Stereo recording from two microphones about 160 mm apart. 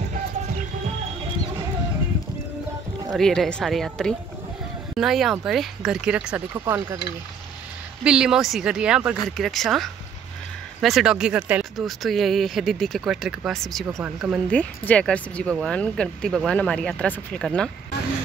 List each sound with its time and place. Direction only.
3.1 s speech: 5° left (ahead or behind)
6.5 s speech: 15° right (ahead or behind)
8.0 s speech: 5° right (ahead or behind)
14.5 s speech: 10° left (ahead or behind)